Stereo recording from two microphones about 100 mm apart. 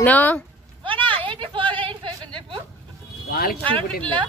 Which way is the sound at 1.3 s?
55° right (ahead or behind).